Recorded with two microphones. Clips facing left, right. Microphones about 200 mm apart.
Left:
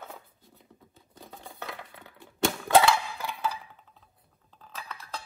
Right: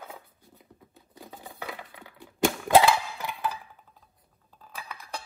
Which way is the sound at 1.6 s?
15° right (ahead or behind).